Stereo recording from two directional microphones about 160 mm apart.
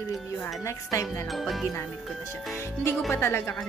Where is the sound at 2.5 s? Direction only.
15° left (ahead or behind).